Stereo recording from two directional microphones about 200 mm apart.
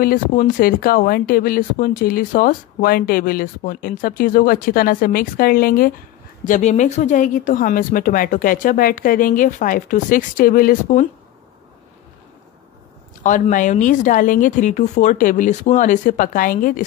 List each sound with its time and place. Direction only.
0.0 s speech: 45° left (ahead or behind)
13.2 s speech: 40° left (ahead or behind)